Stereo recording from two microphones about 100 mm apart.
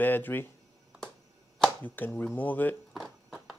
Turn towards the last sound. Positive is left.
turn(degrees=-5)  # may be behind; listen again after turning